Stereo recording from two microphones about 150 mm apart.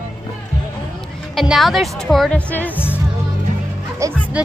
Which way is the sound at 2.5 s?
15° left (ahead or behind).